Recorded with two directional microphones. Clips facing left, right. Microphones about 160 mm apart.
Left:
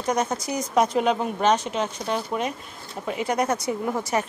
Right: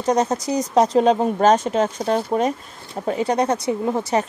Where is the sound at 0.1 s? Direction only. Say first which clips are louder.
Right 6 dB; 35° right (ahead or behind).